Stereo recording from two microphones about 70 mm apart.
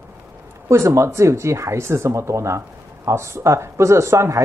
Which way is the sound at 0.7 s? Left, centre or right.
Right.